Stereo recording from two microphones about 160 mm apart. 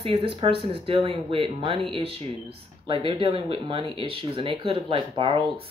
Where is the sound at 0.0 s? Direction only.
35° right (ahead or behind).